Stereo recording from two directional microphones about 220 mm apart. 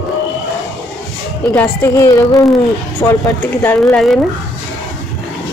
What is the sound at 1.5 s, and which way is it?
A woman's voice, 10° left (ahead or behind).